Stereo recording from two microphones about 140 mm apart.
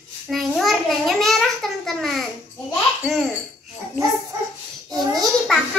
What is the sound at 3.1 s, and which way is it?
Babbling, centre (ahead or behind).